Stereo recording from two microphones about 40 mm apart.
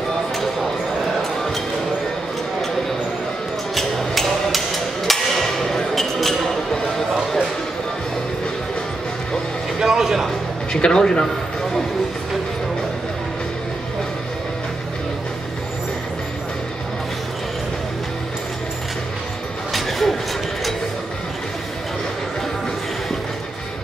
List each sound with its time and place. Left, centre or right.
3.7 s hammer: centre
9.8 s music: centre
10.7 s speech: left
19.7 s a sound: centre